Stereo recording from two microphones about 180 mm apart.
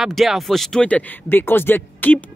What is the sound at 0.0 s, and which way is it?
Speech, centre (ahead or behind).